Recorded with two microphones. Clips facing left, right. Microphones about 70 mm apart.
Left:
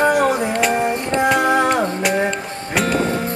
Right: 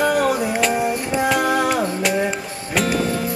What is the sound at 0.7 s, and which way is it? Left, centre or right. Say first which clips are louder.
Music: left 2 dB; left.